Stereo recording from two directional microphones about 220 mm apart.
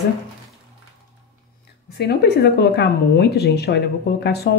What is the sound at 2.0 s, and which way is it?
Speech, 50° left (ahead or behind).